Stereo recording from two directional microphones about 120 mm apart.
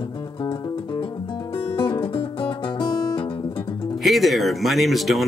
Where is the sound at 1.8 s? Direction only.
45° left (ahead or behind).